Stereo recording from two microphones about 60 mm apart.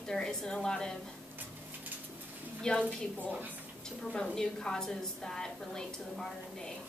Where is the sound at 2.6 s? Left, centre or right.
Centre.